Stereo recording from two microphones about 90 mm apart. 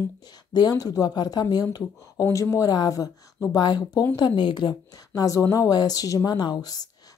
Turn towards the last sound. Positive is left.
turn(degrees=50)  # may be behind; listen again after turning